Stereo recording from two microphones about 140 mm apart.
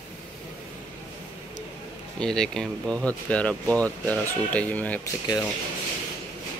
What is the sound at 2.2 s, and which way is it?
Speech, 5° left (ahead or behind).